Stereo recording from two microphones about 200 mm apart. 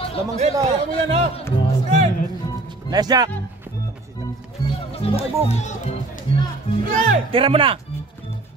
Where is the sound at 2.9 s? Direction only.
20° right (ahead or behind).